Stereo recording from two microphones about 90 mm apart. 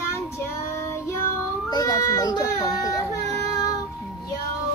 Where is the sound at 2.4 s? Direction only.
40° left (ahead or behind).